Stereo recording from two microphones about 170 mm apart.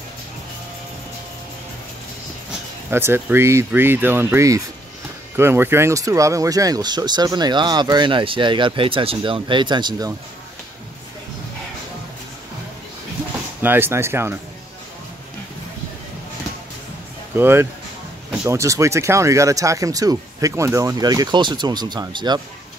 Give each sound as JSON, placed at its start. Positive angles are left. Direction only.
{"t": 2.9, "sound": "speech", "side_deg": -15}
{"t": 13.6, "sound": "speech", "side_deg": -10}
{"t": 17.4, "sound": "speech", "side_deg": -15}